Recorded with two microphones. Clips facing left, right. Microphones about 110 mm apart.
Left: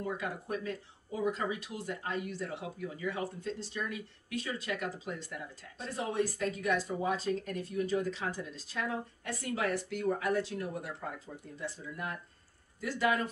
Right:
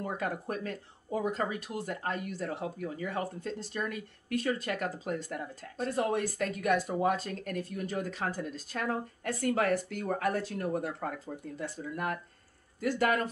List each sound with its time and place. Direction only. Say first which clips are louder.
0.0 s speech: right 3 dB; 50° right (ahead or behind)